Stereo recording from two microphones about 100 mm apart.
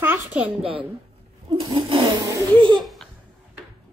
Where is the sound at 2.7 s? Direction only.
Centre (ahead or behind).